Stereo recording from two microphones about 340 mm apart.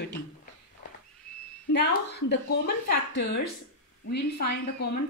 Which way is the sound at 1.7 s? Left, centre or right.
Left.